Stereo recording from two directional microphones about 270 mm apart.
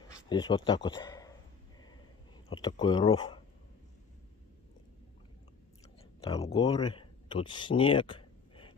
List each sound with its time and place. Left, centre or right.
0.1 s speech: centre
2.5 s speech: centre
6.2 s speech: left